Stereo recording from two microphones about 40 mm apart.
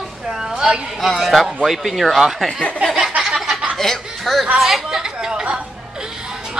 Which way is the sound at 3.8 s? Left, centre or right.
Centre.